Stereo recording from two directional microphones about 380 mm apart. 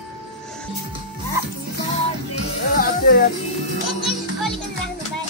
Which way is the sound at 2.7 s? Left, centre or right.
Left.